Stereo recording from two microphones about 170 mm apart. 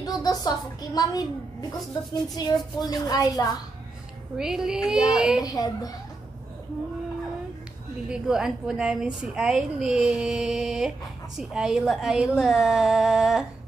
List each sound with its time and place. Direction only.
0.0 s a woman's voice: 20° left (ahead or behind)
4.4 s a woman's voice: 5° right (ahead or behind)
5.4 s a woman's voice: 20° left (ahead or behind)
8.1 s a woman's voice: 5° right (ahead or behind)